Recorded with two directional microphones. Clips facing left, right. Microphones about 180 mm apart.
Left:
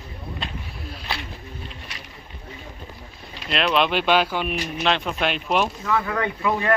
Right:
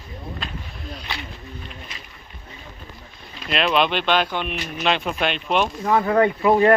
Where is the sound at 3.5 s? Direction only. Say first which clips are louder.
Right 1 dB; centre (ahead or behind).